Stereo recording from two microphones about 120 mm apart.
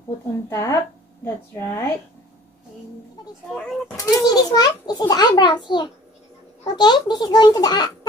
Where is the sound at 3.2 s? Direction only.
35° left (ahead or behind).